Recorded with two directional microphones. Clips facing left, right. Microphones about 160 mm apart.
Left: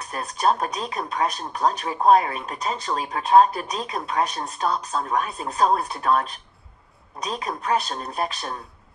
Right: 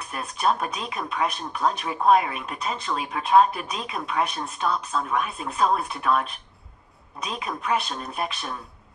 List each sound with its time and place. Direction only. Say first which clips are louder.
0.1 s speech: left 2 dB; 35° left (ahead or behind)